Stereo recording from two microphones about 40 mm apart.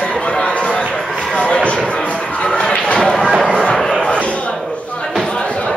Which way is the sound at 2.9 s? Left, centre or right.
Centre.